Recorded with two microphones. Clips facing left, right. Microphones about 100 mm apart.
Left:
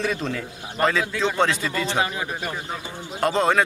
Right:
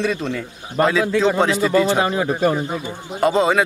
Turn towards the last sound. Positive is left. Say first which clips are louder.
# right 4 dB
turn(degrees=-5)  # may be behind; listen again after turning